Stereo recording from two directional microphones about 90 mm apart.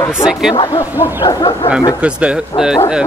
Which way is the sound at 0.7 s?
35° left (ahead or behind).